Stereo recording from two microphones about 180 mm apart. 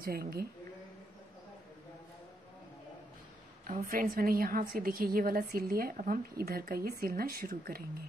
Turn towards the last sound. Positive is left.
turn(degrees=-55)  # may be behind; listen again after turning